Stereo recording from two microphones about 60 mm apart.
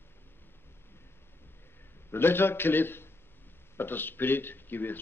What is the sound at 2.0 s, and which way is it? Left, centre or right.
A man's voice, left.